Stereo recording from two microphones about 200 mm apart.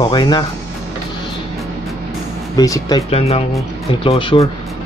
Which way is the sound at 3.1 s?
30° left (ahead or behind).